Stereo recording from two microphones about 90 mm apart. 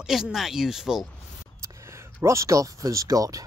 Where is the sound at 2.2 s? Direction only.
35° right (ahead or behind).